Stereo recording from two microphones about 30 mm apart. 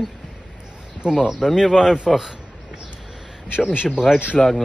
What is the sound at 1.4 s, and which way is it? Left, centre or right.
Speech, centre.